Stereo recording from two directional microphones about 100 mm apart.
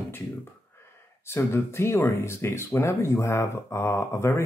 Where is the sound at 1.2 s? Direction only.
25° left (ahead or behind).